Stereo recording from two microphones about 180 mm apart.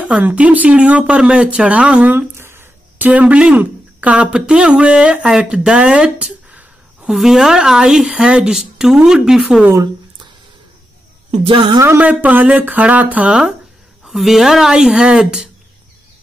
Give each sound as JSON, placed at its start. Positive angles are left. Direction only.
{"t": 0.0, "sound": "speech", "side_deg": -10}
{"t": 11.3, "sound": "speech", "side_deg": -30}
{"t": 11.8, "sound": "speech", "side_deg": -10}